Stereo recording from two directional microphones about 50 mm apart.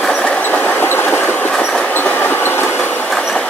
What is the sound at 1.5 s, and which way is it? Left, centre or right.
Train, centre.